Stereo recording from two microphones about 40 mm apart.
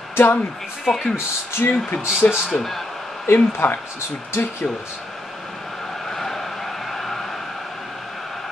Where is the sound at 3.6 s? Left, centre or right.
Left.